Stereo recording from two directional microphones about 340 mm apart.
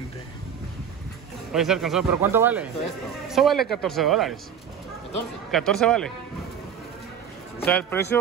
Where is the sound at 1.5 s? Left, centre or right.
Centre.